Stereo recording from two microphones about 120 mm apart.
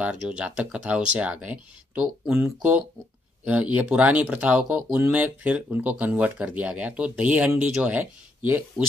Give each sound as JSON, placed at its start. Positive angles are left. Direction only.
{"t": 0.0, "sound": "speech", "side_deg": -5}